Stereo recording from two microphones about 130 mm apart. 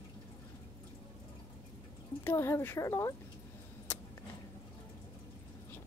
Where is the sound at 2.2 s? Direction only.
20° left (ahead or behind).